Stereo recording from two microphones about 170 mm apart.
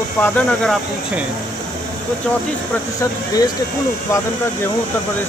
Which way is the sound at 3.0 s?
20° left (ahead or behind).